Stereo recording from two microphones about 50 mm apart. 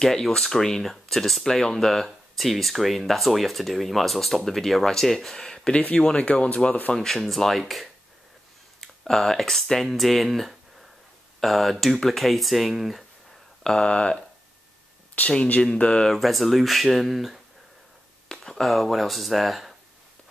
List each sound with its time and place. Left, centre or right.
0.0 s speech: centre
7.0 s speech: centre
9.0 s speech: centre
13.7 s speech: centre
15.2 s speech: left
15.6 s speech: centre
16.2 s speech: centre
18.3 s speech: centre